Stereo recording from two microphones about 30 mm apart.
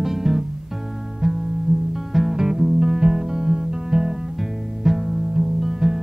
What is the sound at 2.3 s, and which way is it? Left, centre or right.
Music, centre.